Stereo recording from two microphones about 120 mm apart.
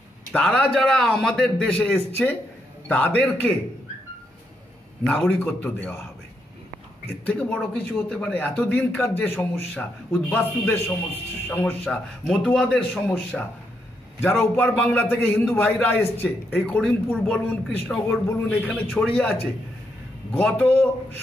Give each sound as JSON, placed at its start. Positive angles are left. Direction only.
{"t": 0.3, "sound": "a man's voice", "side_deg": 10}
{"t": 5.3, "sound": "a man's voice", "side_deg": 15}
{"t": 7.2, "sound": "a man's voice", "side_deg": 10}
{"t": 14.4, "sound": "a man's voice", "side_deg": 15}
{"t": 20.3, "sound": "a man's voice", "side_deg": 10}